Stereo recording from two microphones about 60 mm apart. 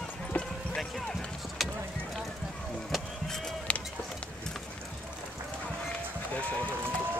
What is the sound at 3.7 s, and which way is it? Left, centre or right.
Music, left.